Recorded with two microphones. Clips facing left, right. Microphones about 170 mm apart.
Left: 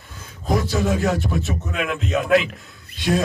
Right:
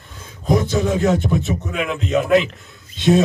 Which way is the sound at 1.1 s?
20° right (ahead or behind).